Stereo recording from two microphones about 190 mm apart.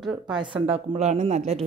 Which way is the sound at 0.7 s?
35° right (ahead or behind).